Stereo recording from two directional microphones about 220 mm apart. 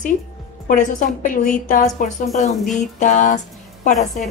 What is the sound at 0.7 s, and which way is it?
Speech, 35° left (ahead or behind).